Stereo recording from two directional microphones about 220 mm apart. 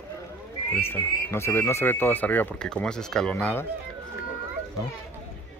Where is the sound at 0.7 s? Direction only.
10° left (ahead or behind).